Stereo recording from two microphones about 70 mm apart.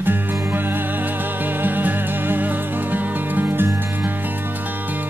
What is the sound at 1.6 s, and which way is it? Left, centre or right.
Music, right.